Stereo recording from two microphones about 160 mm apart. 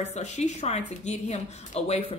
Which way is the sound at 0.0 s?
45° left (ahead or behind).